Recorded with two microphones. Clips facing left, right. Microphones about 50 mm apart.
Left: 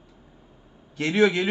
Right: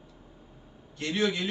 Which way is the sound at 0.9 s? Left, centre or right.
Left.